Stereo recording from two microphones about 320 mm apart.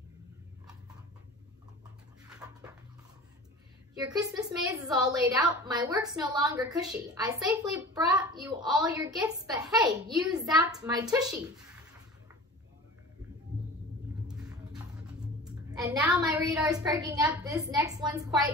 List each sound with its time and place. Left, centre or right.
2.4 s dog: centre
3.9 s a woman's voice: centre
14.2 s music: centre
15.7 s a woman's voice: centre